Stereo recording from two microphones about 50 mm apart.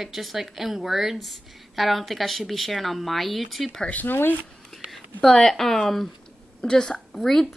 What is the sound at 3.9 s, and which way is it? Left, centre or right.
Speech, left.